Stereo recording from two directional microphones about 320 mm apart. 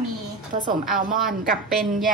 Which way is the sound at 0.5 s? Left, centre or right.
Right.